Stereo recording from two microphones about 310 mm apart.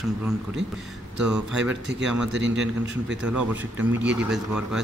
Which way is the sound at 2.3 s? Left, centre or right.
Right.